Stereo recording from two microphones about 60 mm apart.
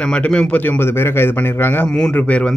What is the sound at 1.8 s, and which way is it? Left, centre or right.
Speech, centre.